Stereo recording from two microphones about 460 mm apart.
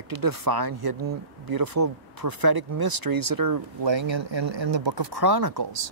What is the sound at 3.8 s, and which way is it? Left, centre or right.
Speech, right.